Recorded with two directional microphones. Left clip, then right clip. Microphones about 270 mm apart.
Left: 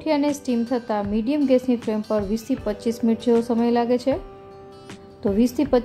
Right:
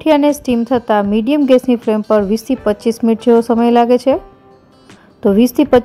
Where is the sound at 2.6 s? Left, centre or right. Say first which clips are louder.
Right 11 dB; right.